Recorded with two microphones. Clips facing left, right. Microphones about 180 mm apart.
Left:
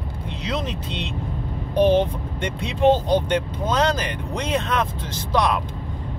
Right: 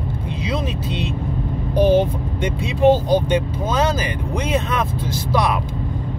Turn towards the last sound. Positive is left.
turn(degrees=-10)  # may be behind; listen again after turning